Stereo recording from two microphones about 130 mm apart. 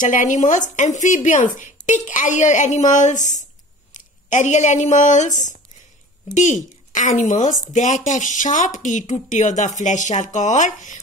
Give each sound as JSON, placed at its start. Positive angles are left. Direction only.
{"t": 0.0, "sound": "speech", "side_deg": 75}